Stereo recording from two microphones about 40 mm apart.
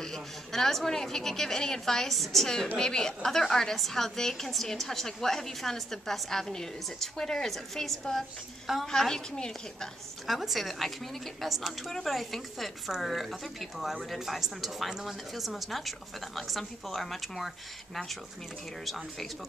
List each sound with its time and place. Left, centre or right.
0.0 s a woman's voice: centre
10.2 s a woman's voice: centre
18.9 s a woman's voice: centre